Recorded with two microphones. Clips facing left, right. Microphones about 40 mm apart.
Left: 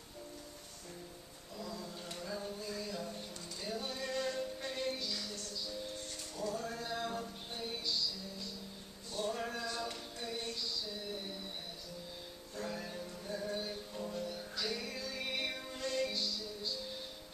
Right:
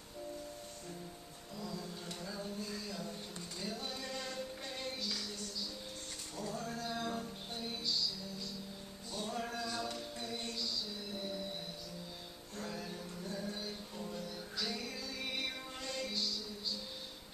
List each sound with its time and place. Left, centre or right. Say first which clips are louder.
1.6 s a sound: even; centre
3.8 s music: left 5 dB; centre
6.3 s music: left 3 dB; centre
6.6 s a sound: even; centre
9.1 s music: left 2 dB; centre
9.7 s a capella: even; centre
12.5 s music: left 2 dB; centre